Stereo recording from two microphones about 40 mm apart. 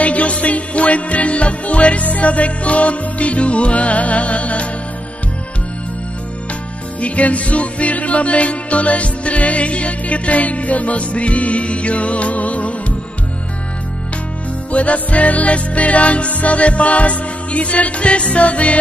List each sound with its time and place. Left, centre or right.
0.0 s music: left
7.0 s music: left
14.7 s music: left